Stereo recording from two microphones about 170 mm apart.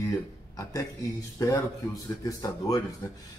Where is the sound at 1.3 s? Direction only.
20° left (ahead or behind).